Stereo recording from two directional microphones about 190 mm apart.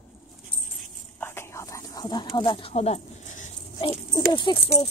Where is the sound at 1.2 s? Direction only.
15° left (ahead or behind); by 3.9 s 35° left (ahead or behind).